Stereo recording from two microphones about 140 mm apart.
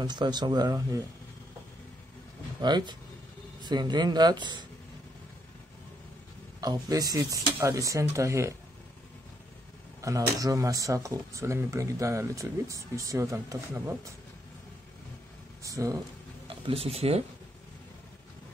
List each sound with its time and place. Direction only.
0.0 s speech: 30° right (ahead or behind)
2.6 s speech: 30° right (ahead or behind)
6.6 s speech: 25° right (ahead or behind)
10.0 s speech: 25° right (ahead or behind)
15.6 s speech: 25° right (ahead or behind)
16.4 s speech: 40° right (ahead or behind)